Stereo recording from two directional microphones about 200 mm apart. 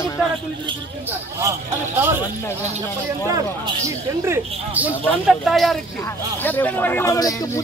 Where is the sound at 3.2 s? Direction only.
15° right (ahead or behind).